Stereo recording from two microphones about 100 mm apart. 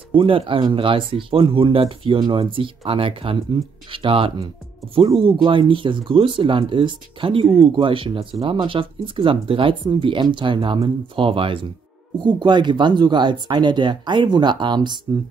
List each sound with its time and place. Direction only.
0.1 s speech: 65° right (ahead or behind)
12.2 s speech: 50° right (ahead or behind)